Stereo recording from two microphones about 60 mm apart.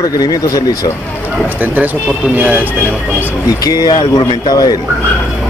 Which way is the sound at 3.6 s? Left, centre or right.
Left.